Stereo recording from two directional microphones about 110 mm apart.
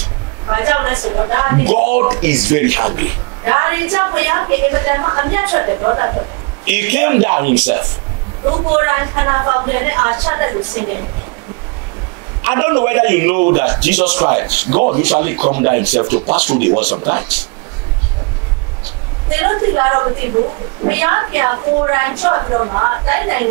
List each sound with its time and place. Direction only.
0.5 s a woman's voice: 25° right (ahead or behind)
6.6 s a woman's voice: 20° right (ahead or behind)
12.4 s a woman's voice: 20° right (ahead or behind)
19.4 s a woman's voice: 25° right (ahead or behind)